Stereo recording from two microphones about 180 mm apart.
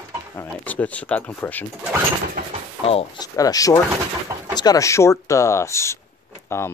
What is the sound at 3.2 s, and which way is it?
Speech, 20° left (ahead or behind).